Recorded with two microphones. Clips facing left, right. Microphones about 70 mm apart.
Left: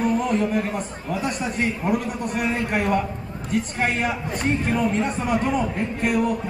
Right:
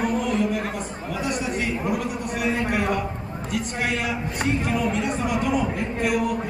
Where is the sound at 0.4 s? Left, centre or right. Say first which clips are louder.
Left 1 dB; left.